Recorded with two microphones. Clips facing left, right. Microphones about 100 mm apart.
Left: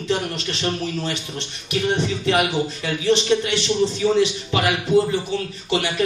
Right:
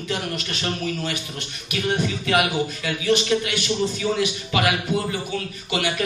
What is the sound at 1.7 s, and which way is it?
A man's voice, 30° left (ahead or behind).